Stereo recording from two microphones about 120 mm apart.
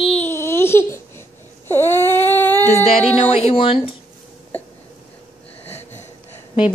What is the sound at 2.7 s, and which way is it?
Speech, 60° left (ahead or behind).